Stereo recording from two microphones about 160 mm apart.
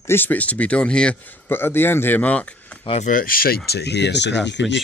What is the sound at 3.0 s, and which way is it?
Speech, 60° left (ahead or behind).